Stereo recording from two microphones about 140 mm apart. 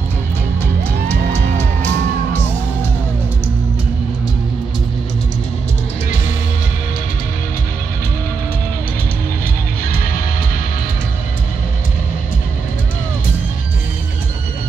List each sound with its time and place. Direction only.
1.0 s music: 20° right (ahead or behind)